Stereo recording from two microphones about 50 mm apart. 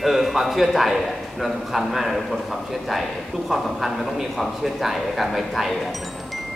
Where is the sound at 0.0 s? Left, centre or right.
Centre.